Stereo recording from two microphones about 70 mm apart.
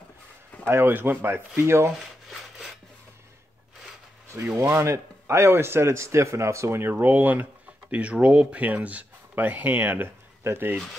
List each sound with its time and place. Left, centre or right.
0.7 s speech: right
4.7 s speech: right